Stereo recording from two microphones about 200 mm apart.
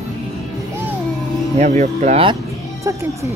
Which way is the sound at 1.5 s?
35° right (ahead or behind).